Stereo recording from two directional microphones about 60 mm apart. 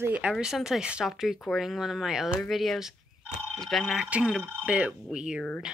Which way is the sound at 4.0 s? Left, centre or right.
Centre.